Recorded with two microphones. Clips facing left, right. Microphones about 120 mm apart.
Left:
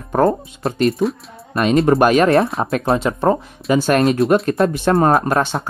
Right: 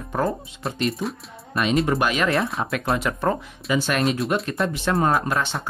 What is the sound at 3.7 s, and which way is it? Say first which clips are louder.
Speech: left 7 dB; 45° left (ahead or behind).